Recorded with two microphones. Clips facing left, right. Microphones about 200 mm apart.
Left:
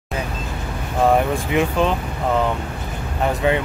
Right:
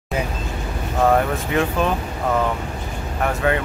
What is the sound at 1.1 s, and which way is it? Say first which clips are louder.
Speech: left 1 dB; 15° left (ahead or behind).